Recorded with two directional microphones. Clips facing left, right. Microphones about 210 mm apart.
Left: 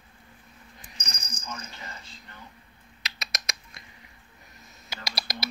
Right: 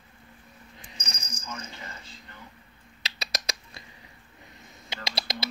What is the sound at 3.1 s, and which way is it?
Rodents, 35° right (ahead or behind).